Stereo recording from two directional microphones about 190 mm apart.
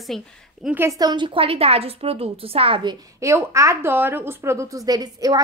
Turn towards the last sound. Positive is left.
turn(degrees=-20)  # may be behind; listen again after turning